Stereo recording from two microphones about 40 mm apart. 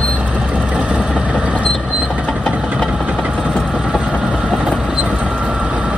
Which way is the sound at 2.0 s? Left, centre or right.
Right.